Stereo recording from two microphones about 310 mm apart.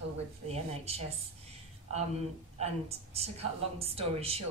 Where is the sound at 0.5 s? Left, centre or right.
Centre.